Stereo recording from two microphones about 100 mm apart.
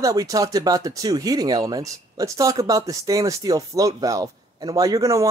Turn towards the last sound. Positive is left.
turn(degrees=-35)  # may be behind; listen again after turning